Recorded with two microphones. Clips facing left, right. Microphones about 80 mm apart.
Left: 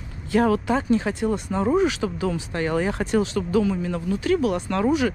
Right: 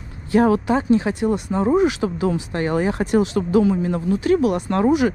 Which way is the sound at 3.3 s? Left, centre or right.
Right.